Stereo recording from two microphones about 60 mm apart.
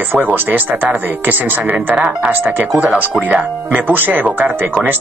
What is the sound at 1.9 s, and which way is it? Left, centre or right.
Speech, centre.